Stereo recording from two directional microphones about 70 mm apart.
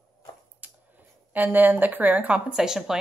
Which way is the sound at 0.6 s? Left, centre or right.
Right.